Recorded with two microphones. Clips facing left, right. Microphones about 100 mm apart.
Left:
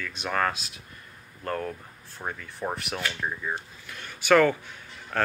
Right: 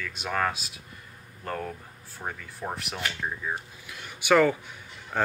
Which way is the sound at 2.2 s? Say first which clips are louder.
Left 2 dB; 10° left (ahead or behind).